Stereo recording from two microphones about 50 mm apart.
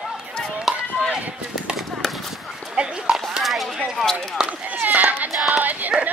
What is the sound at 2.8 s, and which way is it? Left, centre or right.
Clip-clop, centre.